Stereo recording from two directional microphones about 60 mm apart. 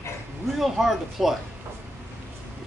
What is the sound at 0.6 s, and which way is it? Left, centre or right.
Speech, centre.